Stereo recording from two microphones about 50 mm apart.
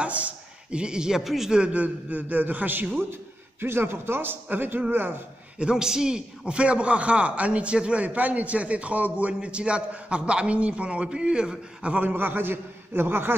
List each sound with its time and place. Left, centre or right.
0.7 s speech: centre
1.5 s a man's voice: right
5.6 s a man's voice: centre
11.8 s a man's voice: right